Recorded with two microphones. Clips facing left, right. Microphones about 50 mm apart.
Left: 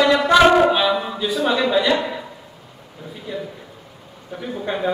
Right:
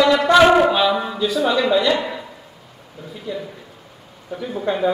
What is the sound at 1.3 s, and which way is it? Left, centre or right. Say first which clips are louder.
Speech: right 1 dB; centre.